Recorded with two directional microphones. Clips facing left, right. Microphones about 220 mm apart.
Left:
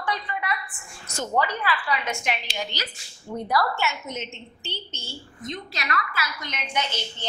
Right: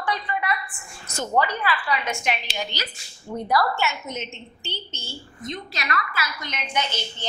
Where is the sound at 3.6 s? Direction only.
15° right (ahead or behind).